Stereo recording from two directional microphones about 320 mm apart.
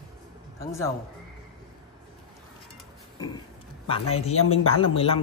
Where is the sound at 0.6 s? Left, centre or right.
Centre.